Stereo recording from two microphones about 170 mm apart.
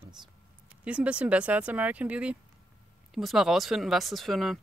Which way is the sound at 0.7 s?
5° right (ahead or behind).